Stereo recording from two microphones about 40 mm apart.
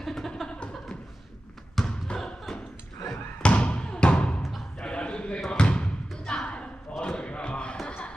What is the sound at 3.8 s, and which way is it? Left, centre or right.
Music, left.